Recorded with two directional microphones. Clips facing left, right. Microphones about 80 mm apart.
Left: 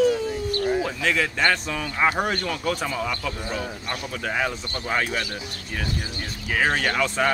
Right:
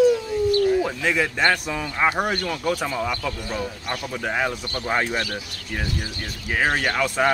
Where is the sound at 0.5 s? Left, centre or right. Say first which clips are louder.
Right 4 dB; left.